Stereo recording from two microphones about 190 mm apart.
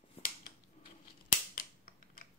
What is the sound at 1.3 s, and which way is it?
Scissors, 45° left (ahead or behind).